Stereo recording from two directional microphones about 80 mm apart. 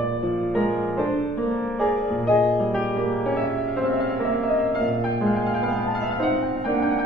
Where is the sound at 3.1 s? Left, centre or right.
Centre.